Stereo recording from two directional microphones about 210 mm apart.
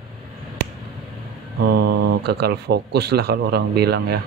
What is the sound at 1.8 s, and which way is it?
Speech, 50° right (ahead or behind).